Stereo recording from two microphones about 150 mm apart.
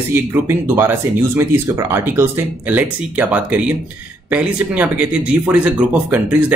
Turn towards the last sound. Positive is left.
turn(degrees=-10)  # may be behind; listen again after turning